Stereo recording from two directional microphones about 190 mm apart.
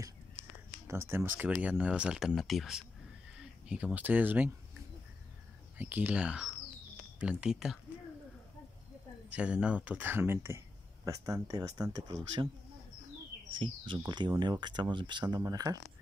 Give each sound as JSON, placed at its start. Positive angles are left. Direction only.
{"t": 0.8, "sound": "speech", "side_deg": -15}
{"t": 5.8, "sound": "speech", "side_deg": -10}
{"t": 9.3, "sound": "speech", "side_deg": -5}
{"t": 13.6, "sound": "speech", "side_deg": -25}